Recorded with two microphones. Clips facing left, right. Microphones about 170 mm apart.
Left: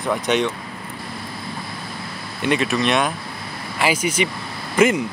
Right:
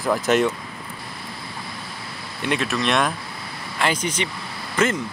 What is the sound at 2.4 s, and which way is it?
Speech, centre (ahead or behind).